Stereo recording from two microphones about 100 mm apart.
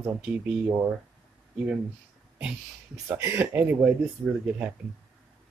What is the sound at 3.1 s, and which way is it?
Speech, 20° right (ahead or behind).